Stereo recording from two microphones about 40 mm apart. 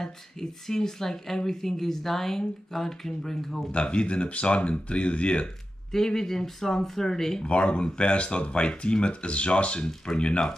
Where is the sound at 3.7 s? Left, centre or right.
Left.